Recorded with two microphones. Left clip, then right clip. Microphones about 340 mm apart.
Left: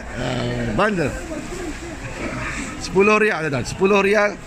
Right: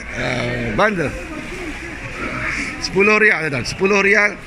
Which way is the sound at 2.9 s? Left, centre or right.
Centre.